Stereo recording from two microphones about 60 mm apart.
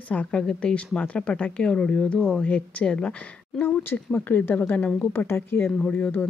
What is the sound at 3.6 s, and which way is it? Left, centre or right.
Speech, left.